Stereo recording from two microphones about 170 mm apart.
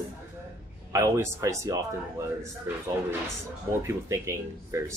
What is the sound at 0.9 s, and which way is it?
A man's voice, 15° right (ahead or behind).